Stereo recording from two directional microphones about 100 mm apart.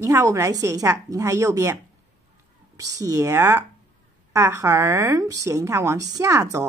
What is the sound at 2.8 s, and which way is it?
A woman's voice, 35° right (ahead or behind).